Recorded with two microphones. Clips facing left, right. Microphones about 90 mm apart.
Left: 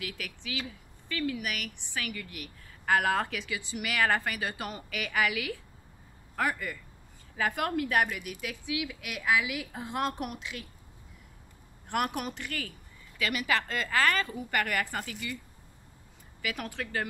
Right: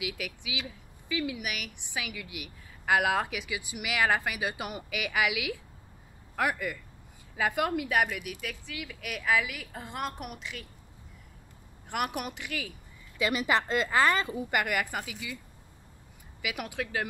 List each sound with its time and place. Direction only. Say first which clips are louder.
0.0 s a woman's voice: right 3 dB; 10° right (ahead or behind)
11.9 s a woman's voice: left 1 dB; 5° right (ahead or behind)
13.2 s a woman's voice: right 3 dB; 25° right (ahead or behind)
16.4 s a woman's voice: right 1 dB; 10° right (ahead or behind)